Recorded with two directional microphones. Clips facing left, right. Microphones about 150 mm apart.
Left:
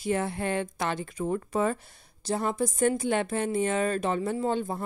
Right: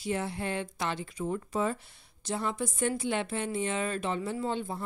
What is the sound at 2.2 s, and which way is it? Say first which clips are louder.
Speech: left 5 dB; 40° left (ahead or behind).